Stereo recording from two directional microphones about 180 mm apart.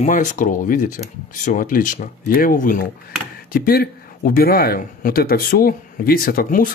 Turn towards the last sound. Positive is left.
turn(degrees=50)  # may be behind; listen again after turning